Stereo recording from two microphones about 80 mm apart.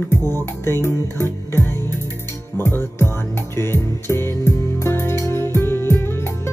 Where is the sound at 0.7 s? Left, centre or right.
Left.